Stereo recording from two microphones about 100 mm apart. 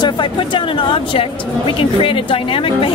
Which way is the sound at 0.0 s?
55° left (ahead or behind).